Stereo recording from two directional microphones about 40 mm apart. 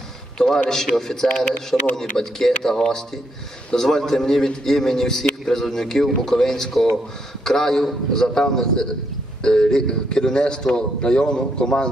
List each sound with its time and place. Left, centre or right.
0.4 s a man's voice: centre